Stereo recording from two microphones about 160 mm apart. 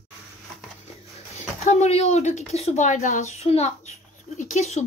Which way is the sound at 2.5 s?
45° left (ahead or behind).